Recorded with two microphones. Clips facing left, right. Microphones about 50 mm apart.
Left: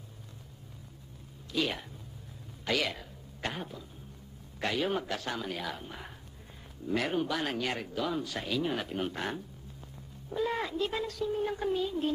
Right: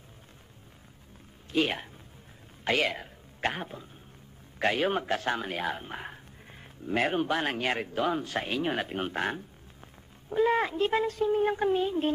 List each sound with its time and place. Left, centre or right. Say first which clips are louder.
1.5 s speech: right 4 dB; right